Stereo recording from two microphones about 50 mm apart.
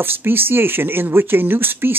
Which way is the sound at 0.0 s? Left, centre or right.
Right.